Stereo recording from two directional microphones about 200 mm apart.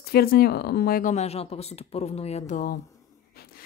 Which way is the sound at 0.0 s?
50° left (ahead or behind).